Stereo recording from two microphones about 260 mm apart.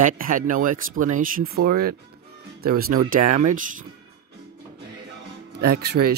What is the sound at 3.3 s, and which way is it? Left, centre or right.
Speech, right.